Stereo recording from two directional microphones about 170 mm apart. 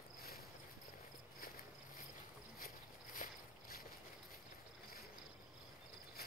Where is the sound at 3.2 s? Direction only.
50° left (ahead or behind).